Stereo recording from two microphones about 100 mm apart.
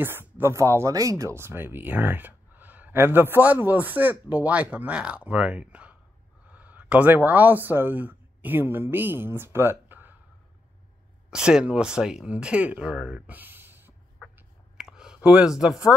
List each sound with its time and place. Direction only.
0.0 s speech: 20° right (ahead or behind)
11.2 s speech: 5° right (ahead or behind)
14.8 s a sound: 5° right (ahead or behind)